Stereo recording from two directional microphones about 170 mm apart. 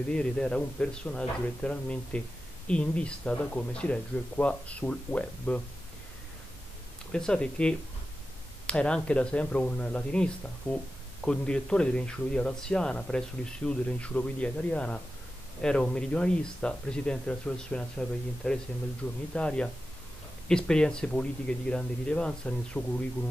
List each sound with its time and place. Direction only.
0.1 s speech: 5° left (ahead or behind)
7.1 s speech: 5° left (ahead or behind)